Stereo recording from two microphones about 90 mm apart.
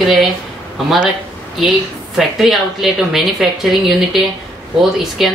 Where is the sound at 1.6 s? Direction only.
5° right (ahead or behind).